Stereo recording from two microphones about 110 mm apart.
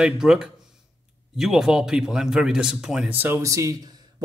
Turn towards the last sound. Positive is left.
turn(degrees=-30)  # may be behind; listen again after turning